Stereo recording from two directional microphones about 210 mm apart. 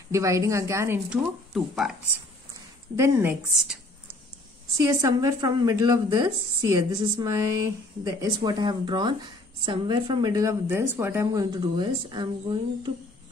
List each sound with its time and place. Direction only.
0.1 s speech: 15° right (ahead or behind)
3.0 s speech: 10° right (ahead or behind)
4.7 s speech: 15° right (ahead or behind)